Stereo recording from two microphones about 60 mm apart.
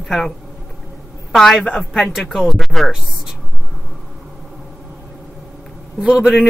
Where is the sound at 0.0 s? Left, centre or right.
Centre.